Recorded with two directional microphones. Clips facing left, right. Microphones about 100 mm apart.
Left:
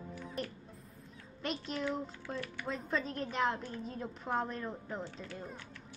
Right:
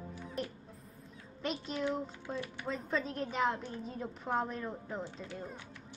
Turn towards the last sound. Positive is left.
turn(degrees=-15)  # may be behind; listen again after turning